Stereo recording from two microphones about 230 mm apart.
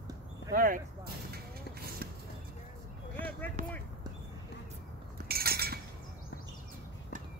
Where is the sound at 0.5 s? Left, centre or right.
Right.